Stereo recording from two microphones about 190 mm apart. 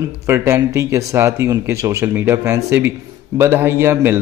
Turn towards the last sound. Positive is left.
turn(degrees=-15)  # may be behind; listen again after turning